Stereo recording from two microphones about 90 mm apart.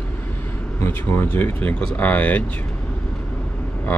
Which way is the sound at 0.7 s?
30° left (ahead or behind).